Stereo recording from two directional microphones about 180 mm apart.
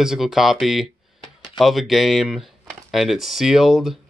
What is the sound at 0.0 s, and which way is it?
Speech, 5° right (ahead or behind).